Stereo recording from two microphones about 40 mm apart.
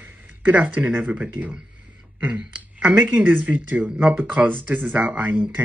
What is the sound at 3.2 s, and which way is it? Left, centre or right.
Speech, right.